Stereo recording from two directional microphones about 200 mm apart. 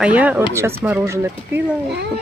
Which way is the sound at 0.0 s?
5° right (ahead or behind).